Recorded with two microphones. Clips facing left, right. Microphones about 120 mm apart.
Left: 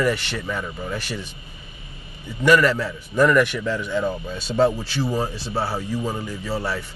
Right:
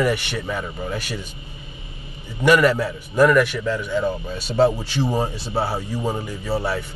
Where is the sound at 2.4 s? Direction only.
15° right (ahead or behind).